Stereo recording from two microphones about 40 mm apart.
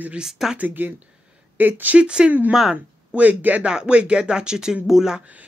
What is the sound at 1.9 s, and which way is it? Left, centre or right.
Speech, right.